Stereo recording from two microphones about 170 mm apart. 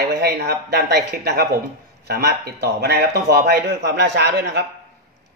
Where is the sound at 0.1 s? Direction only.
70° right (ahead or behind).